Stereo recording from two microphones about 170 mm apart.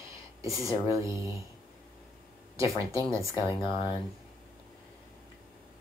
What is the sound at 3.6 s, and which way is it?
Speech, 30° left (ahead or behind).